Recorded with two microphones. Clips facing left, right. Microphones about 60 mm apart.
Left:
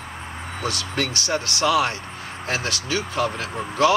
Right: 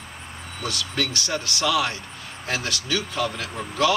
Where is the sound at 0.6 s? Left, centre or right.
Left.